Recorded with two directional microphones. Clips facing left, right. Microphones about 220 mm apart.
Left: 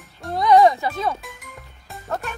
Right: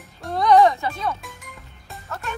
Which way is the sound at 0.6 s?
15° left (ahead or behind).